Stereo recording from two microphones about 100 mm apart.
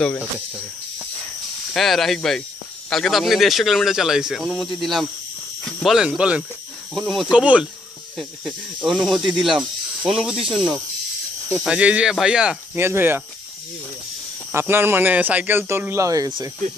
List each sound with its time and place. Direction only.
1.7 s speech: centre (ahead or behind)
5.9 s speech: 10° right (ahead or behind)
6.9 s speech: centre (ahead or behind)
7.2 s speech: 10° right (ahead or behind)
8.2 s speech: centre (ahead or behind)
12.7 s speech: 25° right (ahead or behind)
14.5 s speech: 25° right (ahead or behind)